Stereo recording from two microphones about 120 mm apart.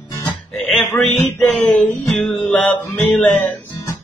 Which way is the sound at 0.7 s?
10° left (ahead or behind).